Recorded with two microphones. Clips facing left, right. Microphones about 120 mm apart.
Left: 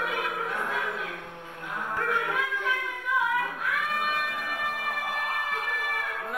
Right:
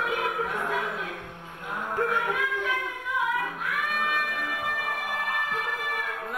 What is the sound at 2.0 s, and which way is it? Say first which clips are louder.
Music: right 2 dB; 25° right (ahead or behind).